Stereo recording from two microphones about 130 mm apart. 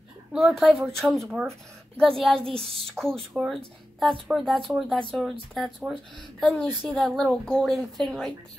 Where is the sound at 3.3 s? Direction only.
Centre (ahead or behind).